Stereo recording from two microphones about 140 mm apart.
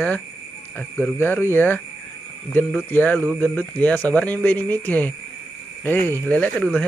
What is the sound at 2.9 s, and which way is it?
Speech, 10° left (ahead or behind).